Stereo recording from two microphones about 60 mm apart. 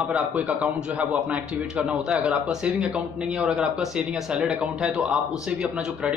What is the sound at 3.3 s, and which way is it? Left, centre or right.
Speech, centre.